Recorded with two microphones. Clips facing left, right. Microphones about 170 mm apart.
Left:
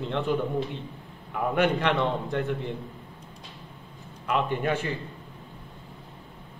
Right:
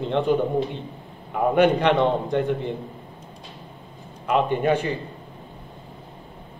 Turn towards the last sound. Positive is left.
turn(degrees=-20)  # may be behind; listen again after turning